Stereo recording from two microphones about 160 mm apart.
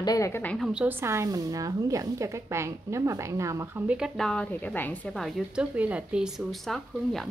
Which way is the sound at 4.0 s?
5° left (ahead or behind).